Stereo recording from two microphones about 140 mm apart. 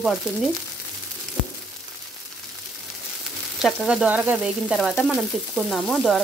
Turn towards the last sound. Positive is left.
turn(degrees=0)  # may be behind; listen again after turning